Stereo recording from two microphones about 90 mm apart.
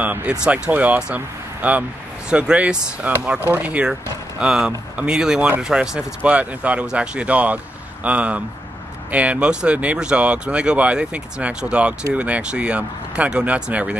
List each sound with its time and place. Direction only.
0.0 s speech: 15° right (ahead or behind)